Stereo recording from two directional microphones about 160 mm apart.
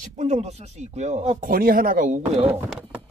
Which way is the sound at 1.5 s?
65° right (ahead or behind).